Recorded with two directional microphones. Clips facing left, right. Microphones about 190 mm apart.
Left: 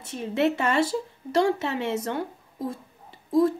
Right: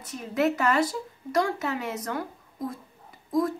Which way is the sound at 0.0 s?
30° left (ahead or behind).